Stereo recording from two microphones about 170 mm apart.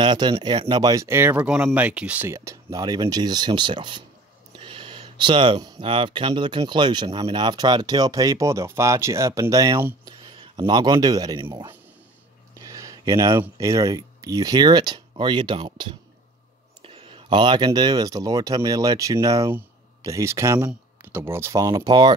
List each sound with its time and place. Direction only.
0.0 s speech: 25° right (ahead or behind)
10.1 s a sound: 30° right (ahead or behind)
10.6 s speech: 25° right (ahead or behind)